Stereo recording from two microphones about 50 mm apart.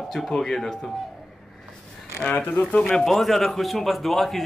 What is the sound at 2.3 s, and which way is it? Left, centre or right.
Speech, left.